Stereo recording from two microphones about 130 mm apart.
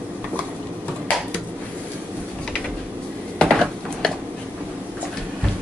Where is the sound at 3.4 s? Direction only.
5° left (ahead or behind).